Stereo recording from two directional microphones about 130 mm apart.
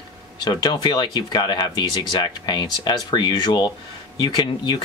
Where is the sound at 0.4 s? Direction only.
35° left (ahead or behind).